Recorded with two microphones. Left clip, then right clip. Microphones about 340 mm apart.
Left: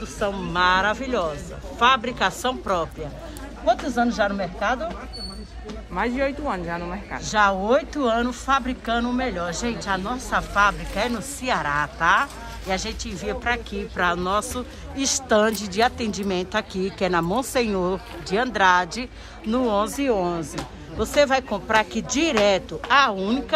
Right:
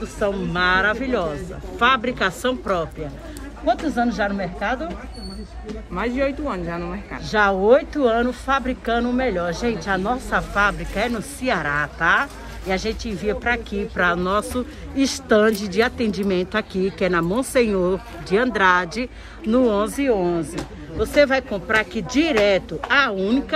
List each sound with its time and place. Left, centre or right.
0.2 s a woman's voice: centre
5.9 s speech: left
7.2 s a woman's voice: centre